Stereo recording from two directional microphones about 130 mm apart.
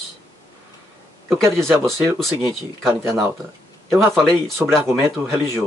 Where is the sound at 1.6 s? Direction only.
5° left (ahead or behind).